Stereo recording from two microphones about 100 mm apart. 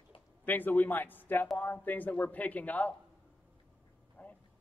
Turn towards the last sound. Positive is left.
turn(degrees=20)  # may be behind; listen again after turning